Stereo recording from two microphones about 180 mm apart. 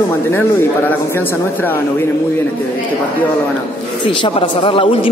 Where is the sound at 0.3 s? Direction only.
10° left (ahead or behind).